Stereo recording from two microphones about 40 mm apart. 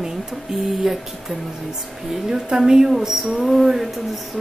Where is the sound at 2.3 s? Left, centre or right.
Centre.